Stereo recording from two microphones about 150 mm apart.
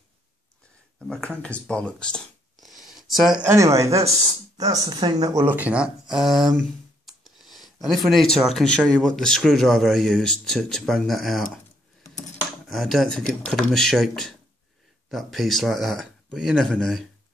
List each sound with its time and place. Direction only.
1.0 s speech: centre (ahead or behind)
1.4 s a sound: 5° left (ahead or behind)
3.4 s speech: 20° right (ahead or behind); by 11.4 s centre (ahead or behind)
12.6 s speech: centre (ahead or behind)